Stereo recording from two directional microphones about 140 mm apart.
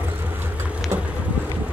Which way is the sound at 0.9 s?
20° right (ahead or behind).